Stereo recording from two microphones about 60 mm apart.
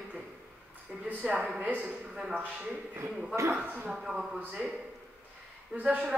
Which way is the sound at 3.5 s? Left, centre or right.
Right.